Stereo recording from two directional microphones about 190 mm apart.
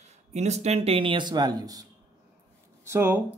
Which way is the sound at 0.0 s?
35° right (ahead or behind).